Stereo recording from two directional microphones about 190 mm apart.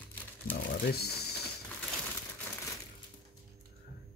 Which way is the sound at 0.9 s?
55° left (ahead or behind).